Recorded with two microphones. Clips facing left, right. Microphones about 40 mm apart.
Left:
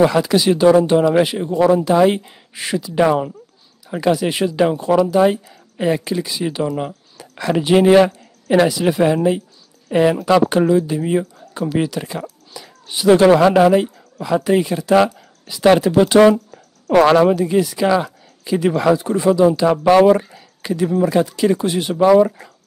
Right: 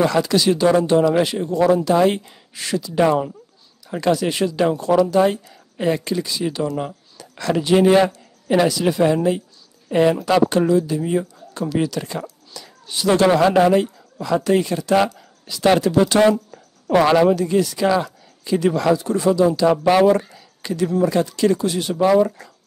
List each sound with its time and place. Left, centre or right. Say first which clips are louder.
0.0 s speech: left 3 dB; centre